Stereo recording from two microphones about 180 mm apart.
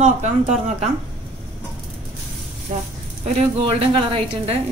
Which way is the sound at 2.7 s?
40° right (ahead or behind).